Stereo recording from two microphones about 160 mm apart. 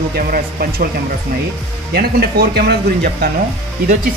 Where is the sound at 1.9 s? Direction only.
85° right.